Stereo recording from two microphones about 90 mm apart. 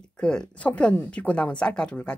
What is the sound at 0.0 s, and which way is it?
Speech, 10° left (ahead or behind).